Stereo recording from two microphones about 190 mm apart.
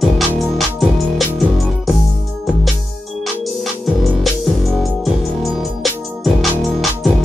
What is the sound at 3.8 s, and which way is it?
Music, centre (ahead or behind).